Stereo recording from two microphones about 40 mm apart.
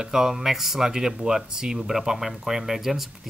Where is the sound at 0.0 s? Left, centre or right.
Centre.